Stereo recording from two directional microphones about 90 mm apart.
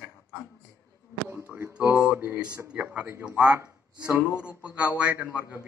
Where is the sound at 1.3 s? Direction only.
25° right (ahead or behind).